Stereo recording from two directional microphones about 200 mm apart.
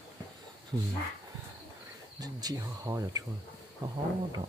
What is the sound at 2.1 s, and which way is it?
Speech, 20° right (ahead or behind).